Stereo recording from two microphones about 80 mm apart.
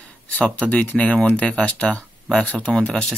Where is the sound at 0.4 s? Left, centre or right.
Centre.